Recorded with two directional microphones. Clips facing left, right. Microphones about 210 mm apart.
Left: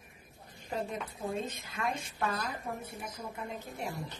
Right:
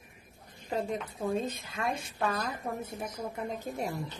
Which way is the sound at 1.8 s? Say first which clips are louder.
Right 2 dB; 40° right (ahead or behind).